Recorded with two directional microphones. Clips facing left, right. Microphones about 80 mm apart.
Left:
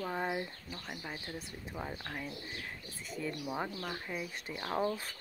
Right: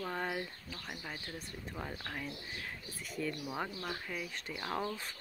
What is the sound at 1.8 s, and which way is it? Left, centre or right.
Speech, centre.